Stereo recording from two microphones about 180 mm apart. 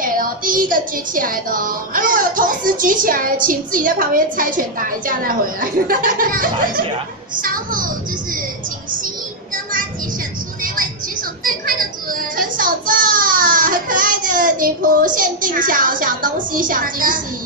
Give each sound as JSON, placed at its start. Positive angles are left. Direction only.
{"t": 0.0, "sound": "speech", "side_deg": -50}
{"t": 11.4, "sound": "a sound", "side_deg": -50}
{"t": 15.1, "sound": "speech", "side_deg": -50}